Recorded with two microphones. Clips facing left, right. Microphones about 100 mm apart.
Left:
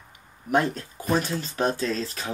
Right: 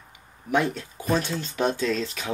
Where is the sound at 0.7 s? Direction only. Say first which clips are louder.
Even; 40° left (ahead or behind).